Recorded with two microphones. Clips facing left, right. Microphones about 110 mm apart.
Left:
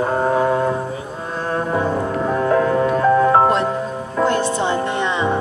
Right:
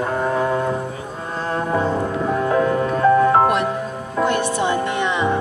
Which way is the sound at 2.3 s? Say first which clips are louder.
Left 2 dB; 40° left (ahead or behind).